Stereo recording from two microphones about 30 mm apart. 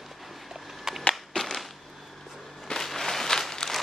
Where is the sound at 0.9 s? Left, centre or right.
Centre.